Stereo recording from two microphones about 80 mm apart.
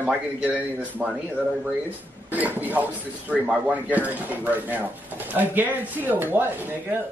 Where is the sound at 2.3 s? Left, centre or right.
Right.